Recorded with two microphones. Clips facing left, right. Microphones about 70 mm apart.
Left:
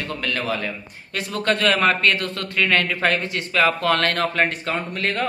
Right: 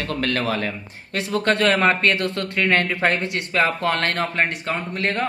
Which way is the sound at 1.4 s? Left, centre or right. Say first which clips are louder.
Right 1 dB; right.